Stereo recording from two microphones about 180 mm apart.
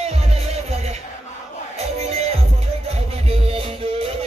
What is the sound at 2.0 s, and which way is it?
Music, 35° right (ahead or behind).